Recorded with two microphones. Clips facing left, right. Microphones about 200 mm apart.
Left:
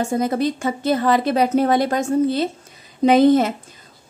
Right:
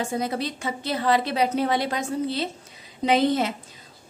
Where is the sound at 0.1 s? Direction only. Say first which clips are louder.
Left 7 dB; 50° left (ahead or behind).